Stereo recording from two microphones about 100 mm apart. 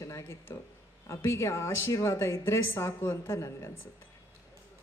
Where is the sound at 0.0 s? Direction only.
30° left (ahead or behind).